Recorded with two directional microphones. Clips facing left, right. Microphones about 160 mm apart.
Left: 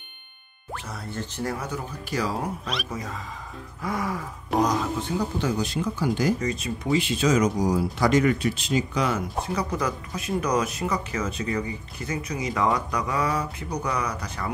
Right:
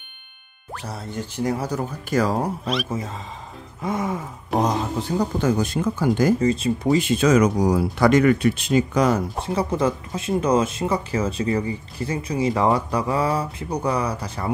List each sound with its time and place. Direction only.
1.1 s speech: 10° right (ahead or behind)
1.6 s speech: 40° right (ahead or behind)
2.9 s speech: 25° right (ahead or behind)
5.1 s speech: 50° right (ahead or behind)
6.4 s speech: 30° right (ahead or behind)
7.0 s speech: 55° right (ahead or behind)
9.4 s speech: 25° right (ahead or behind)